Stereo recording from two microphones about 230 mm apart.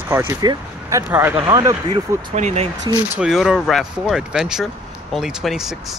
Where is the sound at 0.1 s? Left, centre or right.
Centre.